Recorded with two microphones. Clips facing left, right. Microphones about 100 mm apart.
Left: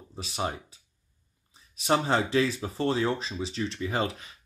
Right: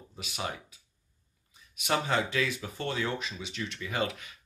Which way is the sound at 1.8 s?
30° left (ahead or behind).